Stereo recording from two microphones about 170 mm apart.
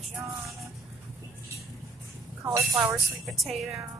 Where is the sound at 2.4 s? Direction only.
15° right (ahead or behind).